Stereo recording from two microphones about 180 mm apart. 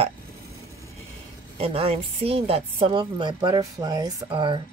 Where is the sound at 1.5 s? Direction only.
35° right (ahead or behind).